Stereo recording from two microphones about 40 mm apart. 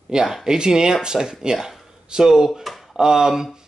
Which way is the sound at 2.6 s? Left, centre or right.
Centre.